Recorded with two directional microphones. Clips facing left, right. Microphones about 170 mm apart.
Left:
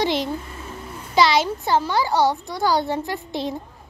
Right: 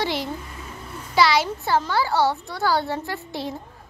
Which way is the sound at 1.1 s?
20° left (ahead or behind).